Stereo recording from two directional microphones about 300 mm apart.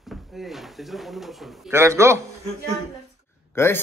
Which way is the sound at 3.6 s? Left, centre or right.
Centre.